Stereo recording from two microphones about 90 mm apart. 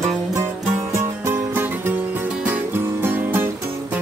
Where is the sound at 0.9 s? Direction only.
30° right (ahead or behind).